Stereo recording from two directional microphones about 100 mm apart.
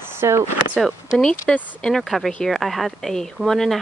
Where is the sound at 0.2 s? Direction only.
25° right (ahead or behind).